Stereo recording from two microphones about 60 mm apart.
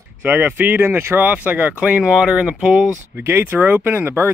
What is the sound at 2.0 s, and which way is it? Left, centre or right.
Speech, centre.